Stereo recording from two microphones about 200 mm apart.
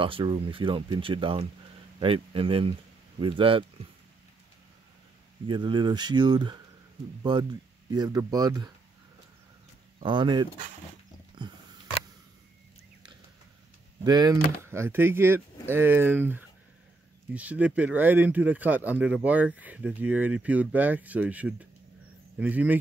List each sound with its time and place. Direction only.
0.0 s speech: 25° right (ahead or behind)
5.5 s speech: 25° right (ahead or behind)
10.0 s speech: 25° right (ahead or behind)
14.0 s speech: 20° right (ahead or behind)